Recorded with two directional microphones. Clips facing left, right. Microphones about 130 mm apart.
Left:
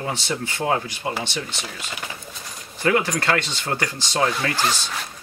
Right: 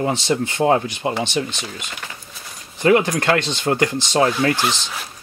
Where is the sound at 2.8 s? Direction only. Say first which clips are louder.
Right 5 dB; 20° right (ahead or behind).